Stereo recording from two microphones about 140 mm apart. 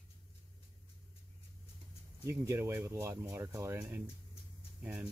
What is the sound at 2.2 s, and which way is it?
Speech, 15° right (ahead or behind).